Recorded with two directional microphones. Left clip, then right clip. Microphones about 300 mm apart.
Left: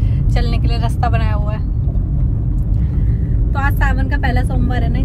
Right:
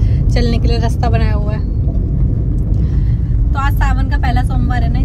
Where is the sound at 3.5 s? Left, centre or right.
Right.